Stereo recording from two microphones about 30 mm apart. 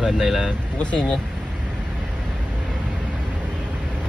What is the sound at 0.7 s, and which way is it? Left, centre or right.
Speech, left.